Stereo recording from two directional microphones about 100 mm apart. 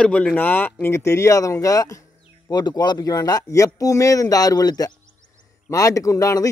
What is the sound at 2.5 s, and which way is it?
Speech, 45° left (ahead or behind).